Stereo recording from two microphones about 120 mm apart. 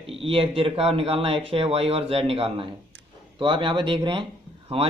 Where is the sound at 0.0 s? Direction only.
50° right (ahead or behind).